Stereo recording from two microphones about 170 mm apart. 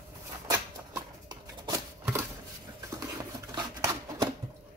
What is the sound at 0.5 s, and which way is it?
Shuffling cards, 20° right (ahead or behind).